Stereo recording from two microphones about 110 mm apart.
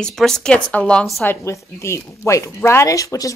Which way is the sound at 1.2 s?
25° left (ahead or behind).